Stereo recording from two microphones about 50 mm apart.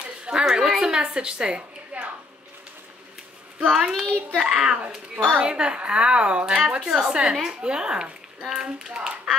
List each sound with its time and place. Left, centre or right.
0.0 s speech: centre
3.6 s a woman's voice: centre